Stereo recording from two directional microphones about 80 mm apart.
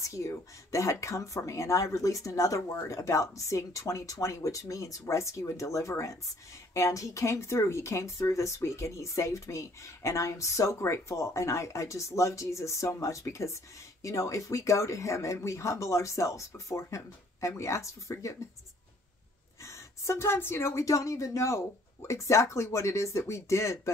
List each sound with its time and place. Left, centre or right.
0.0 s speech: left
19.6 s speech: left